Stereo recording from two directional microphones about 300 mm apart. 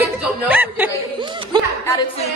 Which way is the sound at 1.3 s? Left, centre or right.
Centre.